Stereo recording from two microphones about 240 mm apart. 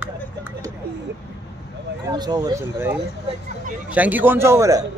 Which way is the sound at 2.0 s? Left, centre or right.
Centre.